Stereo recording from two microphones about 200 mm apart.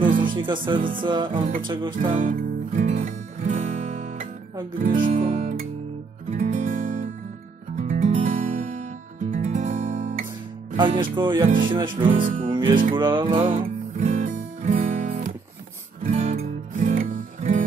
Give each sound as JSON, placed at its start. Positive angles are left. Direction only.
{"t": 0.2, "sound": "speech", "side_deg": -25}
{"t": 1.0, "sound": "music", "side_deg": -25}
{"t": 2.1, "sound": "music", "side_deg": -40}
{"t": 4.9, "sound": "guitar", "side_deg": -35}
{"t": 6.3, "sound": "music", "side_deg": -35}
{"t": 9.3, "sound": "guitar", "side_deg": -35}
{"t": 10.8, "sound": "music", "side_deg": -25}
{"t": 12.1, "sound": "music", "side_deg": -40}
{"t": 12.4, "sound": "music", "side_deg": -25}
{"t": 13.9, "sound": "music", "side_deg": -40}